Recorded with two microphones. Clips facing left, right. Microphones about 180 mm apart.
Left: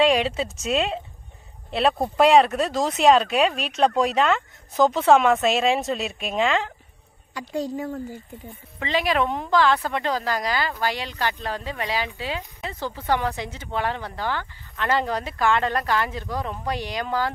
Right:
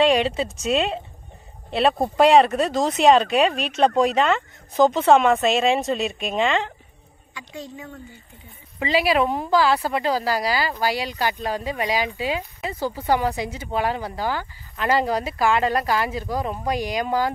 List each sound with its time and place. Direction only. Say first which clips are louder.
0.0 s speech: right 1 dB; centre (ahead or behind)
7.3 s speech: left 9 dB; 40° left (ahead or behind)
8.7 s speech: right 3 dB; 10° right (ahead or behind)